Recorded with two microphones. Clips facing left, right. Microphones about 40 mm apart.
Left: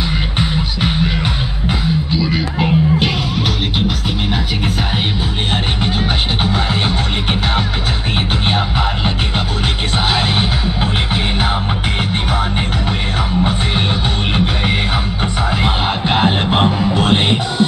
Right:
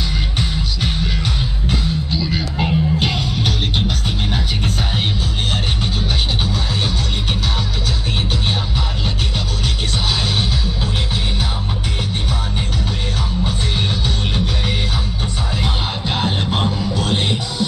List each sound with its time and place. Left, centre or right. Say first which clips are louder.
0.4 s music: left 5 dB; left
2.1 s music: left 4 dB; centre
15.6 s music: left 6 dB; left